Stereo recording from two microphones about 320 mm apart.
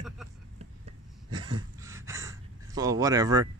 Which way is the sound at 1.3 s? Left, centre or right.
Centre.